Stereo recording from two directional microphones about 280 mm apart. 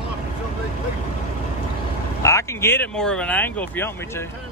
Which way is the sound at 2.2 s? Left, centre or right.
Centre.